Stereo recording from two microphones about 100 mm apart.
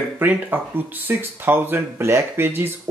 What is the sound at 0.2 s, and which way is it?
Speech, 20° right (ahead or behind).